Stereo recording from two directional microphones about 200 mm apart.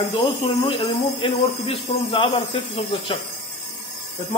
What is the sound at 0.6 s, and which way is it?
Speech, 25° left (ahead or behind).